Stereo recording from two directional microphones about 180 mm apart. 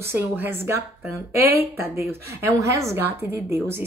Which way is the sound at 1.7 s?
15° right (ahead or behind).